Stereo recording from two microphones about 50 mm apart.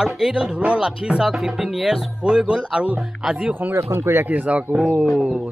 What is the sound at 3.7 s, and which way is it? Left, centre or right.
Speech, right.